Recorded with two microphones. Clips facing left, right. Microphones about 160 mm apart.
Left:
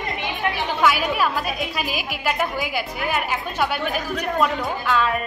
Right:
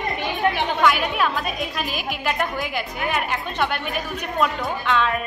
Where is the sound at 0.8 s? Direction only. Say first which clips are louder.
Left 3 dB; 5° left (ahead or behind).